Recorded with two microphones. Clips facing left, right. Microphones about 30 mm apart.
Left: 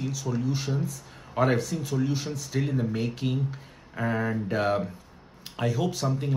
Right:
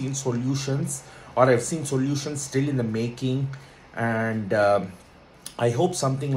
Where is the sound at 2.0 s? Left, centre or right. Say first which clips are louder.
Right 2 dB; centre.